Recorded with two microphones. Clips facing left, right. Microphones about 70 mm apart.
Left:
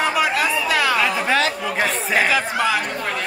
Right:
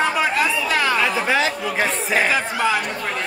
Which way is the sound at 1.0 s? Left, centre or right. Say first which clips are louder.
Even; centre.